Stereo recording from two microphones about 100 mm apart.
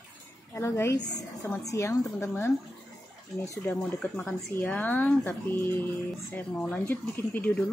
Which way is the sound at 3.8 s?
5° left (ahead or behind).